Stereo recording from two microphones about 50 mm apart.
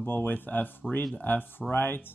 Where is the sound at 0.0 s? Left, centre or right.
Left.